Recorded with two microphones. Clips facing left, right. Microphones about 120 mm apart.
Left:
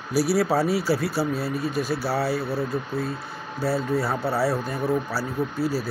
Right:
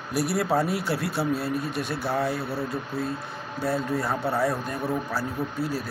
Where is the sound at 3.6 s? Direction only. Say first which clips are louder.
Left 2 dB; 5° left (ahead or behind).